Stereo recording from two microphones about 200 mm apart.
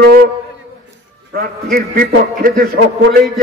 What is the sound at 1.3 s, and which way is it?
A man's voice, 50° right (ahead or behind).